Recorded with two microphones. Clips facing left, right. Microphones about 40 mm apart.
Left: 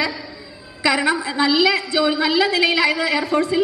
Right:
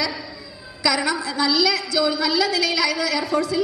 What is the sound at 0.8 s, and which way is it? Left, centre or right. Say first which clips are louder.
A woman's voice: left 3 dB; left.